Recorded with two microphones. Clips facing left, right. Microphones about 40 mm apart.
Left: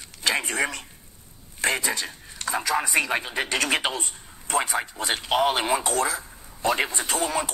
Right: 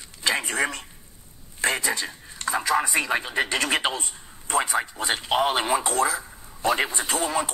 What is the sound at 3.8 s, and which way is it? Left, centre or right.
A man's voice, right.